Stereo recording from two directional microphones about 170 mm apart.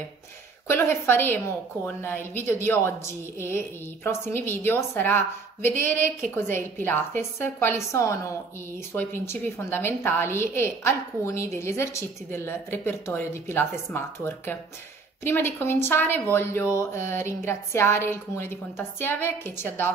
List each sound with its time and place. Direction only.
0.7 s a woman's voice: 15° left (ahead or behind)